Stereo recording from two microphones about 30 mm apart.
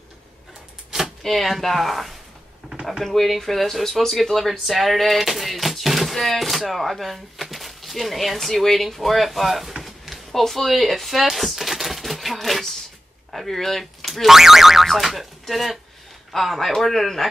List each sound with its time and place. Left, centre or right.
1.2 s speech: centre
9.8 s a sound: centre
10.7 s typewriter: centre
13.3 s speech: centre
14.3 s boing: centre
14.9 s speech: centre